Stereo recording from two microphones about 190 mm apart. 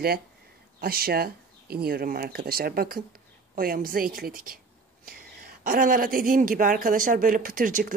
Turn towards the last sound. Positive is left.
turn(degrees=-45)  # may be behind; listen again after turning